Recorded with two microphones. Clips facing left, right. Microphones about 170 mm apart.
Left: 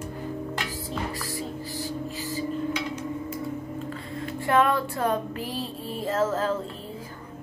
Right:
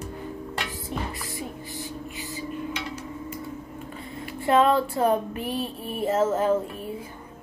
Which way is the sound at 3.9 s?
25° right (ahead or behind).